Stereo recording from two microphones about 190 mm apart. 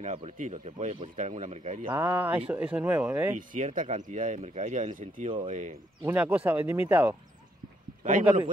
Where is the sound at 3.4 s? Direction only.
40° right (ahead or behind).